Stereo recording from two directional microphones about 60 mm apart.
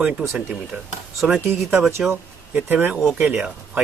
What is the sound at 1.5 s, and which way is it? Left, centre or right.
Speech, right.